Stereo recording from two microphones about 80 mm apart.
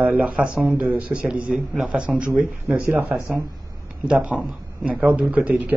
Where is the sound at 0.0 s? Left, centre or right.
Centre.